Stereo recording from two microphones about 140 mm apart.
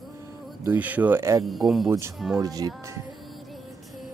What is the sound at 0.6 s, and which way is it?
Speech, 10° right (ahead or behind).